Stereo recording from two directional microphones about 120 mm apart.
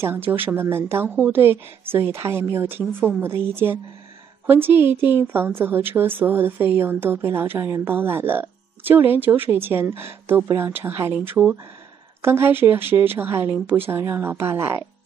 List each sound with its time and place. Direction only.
0.0 s a woman's voice: 15° right (ahead or behind)